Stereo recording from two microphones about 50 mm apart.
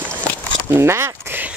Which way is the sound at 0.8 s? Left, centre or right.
Right.